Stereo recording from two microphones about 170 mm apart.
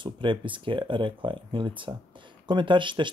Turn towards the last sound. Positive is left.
turn(degrees=-30)  # may be behind; listen again after turning